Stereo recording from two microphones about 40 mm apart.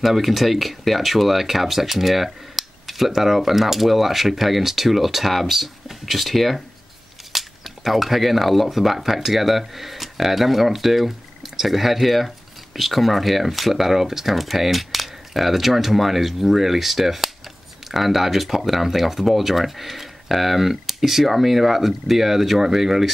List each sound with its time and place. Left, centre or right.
0.0 s speech: centre